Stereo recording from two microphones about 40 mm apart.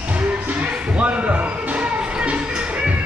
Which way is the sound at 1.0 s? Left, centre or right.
Right.